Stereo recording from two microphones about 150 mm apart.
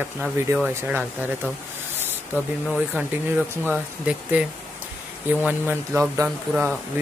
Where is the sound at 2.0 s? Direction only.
15° right (ahead or behind).